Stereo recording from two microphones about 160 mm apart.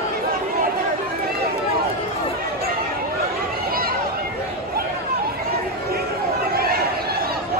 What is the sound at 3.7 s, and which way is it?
Chatter, 65° right (ahead or behind).